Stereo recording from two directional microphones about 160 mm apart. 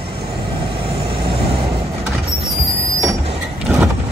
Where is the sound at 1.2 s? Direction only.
35° right (ahead or behind).